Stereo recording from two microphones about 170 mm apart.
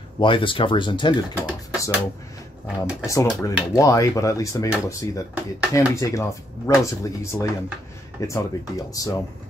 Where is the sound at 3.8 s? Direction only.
20° left (ahead or behind).